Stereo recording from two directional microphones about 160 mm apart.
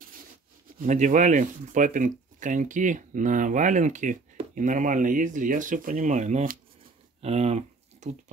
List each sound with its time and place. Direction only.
0.7 s speech: 50° right (ahead or behind)
7.2 s speech: 40° right (ahead or behind)